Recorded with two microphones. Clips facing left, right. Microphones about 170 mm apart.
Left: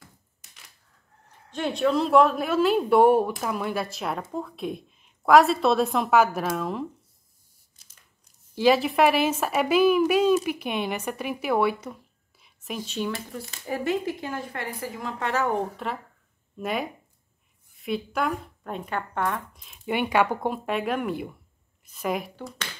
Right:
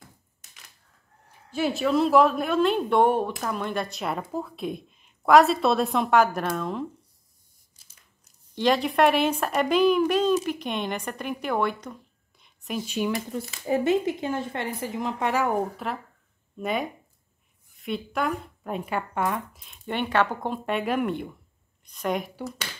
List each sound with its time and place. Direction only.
1.5 s speech: 5° right (ahead or behind)
8.5 s speech: 5° left (ahead or behind)
12.8 s speech: 10° right (ahead or behind)